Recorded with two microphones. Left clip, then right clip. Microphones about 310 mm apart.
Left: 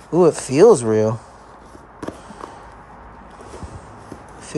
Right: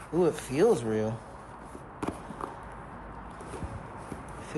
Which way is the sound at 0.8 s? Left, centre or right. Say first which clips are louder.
Left 13 dB; left.